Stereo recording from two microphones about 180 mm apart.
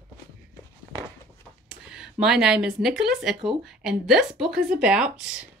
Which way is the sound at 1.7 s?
5° right (ahead or behind).